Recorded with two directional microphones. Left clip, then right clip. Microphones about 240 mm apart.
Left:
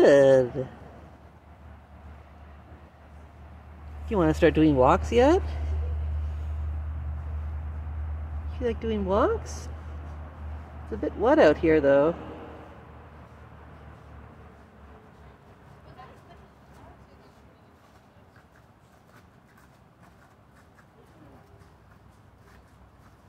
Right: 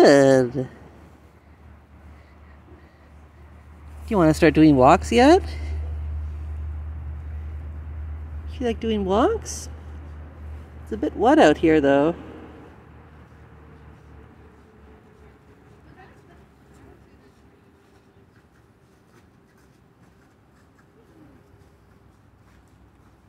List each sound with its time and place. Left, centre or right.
0.0 s speech: right
4.1 s speech: right
8.5 s speech: right
10.9 s speech: right